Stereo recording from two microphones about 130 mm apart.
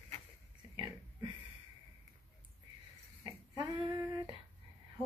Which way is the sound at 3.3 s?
30° right (ahead or behind).